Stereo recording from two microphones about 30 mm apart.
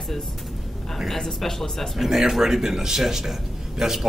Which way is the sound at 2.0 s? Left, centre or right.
Centre.